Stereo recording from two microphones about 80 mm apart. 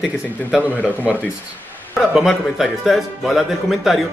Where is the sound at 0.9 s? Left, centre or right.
Right.